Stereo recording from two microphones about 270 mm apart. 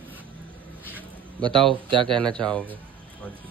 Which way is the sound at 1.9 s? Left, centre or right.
Centre.